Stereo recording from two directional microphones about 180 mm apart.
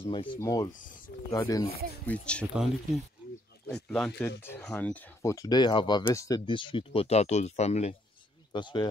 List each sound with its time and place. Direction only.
0.0 s speech: 25° left (ahead or behind)
2.0 s speech: 5° left (ahead or behind); by 7.9 s 40° left (ahead or behind)
8.5 s speech: 25° left (ahead or behind)